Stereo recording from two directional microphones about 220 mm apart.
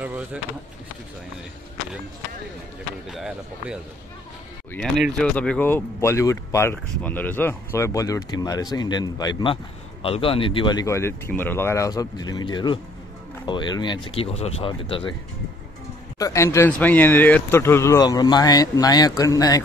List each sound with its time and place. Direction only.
0.0 s a sound: 5° right (ahead or behind)
3.1 s speech: centre (ahead or behind)
4.7 s speech: centre (ahead or behind); by 15.1 s 25° left (ahead or behind)
16.2 s speech: 15° left (ahead or behind)